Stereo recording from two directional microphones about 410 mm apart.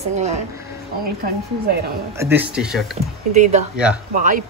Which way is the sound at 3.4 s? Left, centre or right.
Centre.